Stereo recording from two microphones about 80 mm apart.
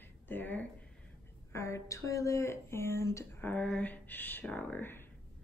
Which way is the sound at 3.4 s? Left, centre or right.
Centre.